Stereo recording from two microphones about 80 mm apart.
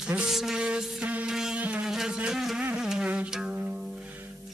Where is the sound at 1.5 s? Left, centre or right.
Centre.